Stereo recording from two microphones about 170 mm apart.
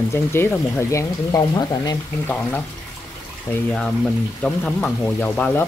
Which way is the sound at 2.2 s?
10° left (ahead or behind).